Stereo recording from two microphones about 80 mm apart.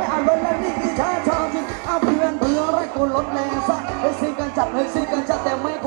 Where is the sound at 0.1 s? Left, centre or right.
Centre.